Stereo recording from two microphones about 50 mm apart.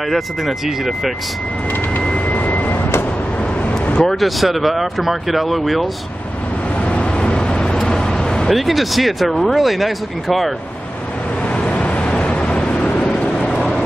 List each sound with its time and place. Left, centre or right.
0.7 s speech: centre
2.0 s vehicle: left
3.6 s vehicle: left
4.0 s speech: centre
6.8 s vehicle: left
8.5 s speech: centre
11.4 s vehicle: left